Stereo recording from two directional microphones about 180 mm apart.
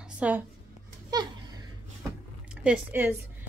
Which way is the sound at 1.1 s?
20° right (ahead or behind).